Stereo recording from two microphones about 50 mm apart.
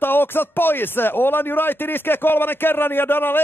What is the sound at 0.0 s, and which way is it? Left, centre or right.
Speech, left.